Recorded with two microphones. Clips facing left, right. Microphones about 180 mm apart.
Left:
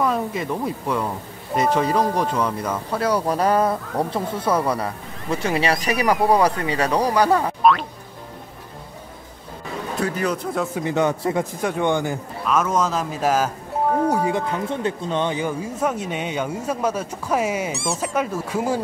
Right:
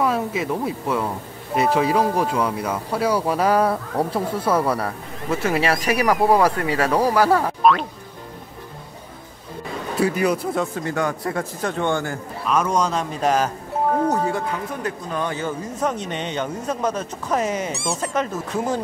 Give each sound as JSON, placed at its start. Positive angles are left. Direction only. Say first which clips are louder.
{"t": 0.0, "sound": "speech", "louder": "right 1 dB", "side_deg": -5}
{"t": 6.6, "sound": "speech", "louder": "right 1 dB", "side_deg": 20}
{"t": 6.9, "sound": "speech", "louder": "right 1 dB", "side_deg": -5}
{"t": 9.9, "sound": "a man's voice", "louder": "right 4 dB", "side_deg": -10}
{"t": 10.8, "sound": "speech", "louder": "left 3 dB", "side_deg": 20}
{"t": 12.4, "sound": "speech", "louder": "even", "side_deg": 0}
{"t": 14.7, "sound": "speech", "louder": "left 3 dB", "side_deg": 25}